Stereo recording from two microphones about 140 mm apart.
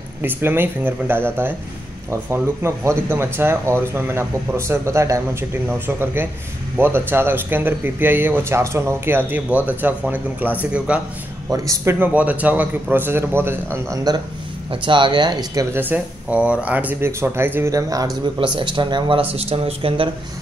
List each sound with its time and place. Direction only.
0.2 s speech: 15° right (ahead or behind)
11.4 s speech: 25° right (ahead or behind)
14.7 s speech: 35° right (ahead or behind)
15.7 s speech: 15° right (ahead or behind); by 20.1 s 45° right (ahead or behind)